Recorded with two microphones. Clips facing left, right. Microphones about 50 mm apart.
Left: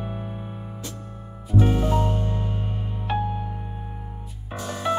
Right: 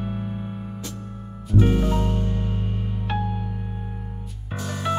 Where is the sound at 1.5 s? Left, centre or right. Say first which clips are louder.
Even; left.